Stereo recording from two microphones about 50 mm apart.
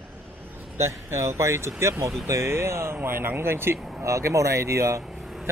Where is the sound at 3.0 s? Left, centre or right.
Right.